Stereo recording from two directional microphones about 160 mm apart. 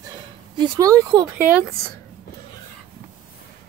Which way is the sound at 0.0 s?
25° right (ahead or behind).